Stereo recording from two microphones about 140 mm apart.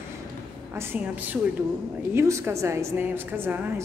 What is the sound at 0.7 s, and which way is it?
A woman's voice, 15° right (ahead or behind).